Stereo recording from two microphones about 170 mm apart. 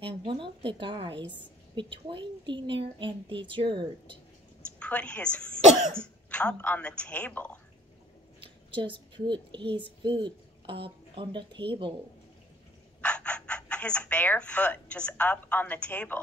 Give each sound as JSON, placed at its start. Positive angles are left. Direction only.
{"t": 0.0, "sound": "a woman's voice", "side_deg": -30}
{"t": 4.7, "sound": "a woman's voice", "side_deg": 5}
{"t": 8.7, "sound": "a woman's voice", "side_deg": -30}
{"t": 13.0, "sound": "speech", "side_deg": 5}